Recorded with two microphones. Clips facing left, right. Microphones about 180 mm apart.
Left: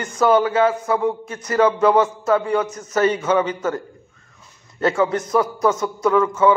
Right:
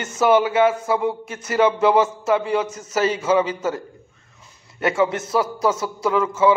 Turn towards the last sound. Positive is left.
turn(degrees=-20)  # may be behind; listen again after turning